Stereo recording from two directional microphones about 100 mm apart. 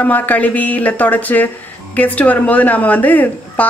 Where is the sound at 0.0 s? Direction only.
15° left (ahead or behind).